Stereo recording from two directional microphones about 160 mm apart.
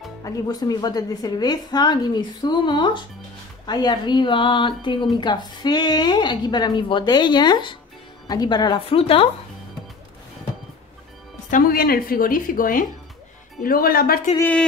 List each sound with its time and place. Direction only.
0.2 s a woman's voice: 25° left (ahead or behind)
11.5 s a woman's voice: 70° left (ahead or behind)
14.4 s a sound: 5° left (ahead or behind)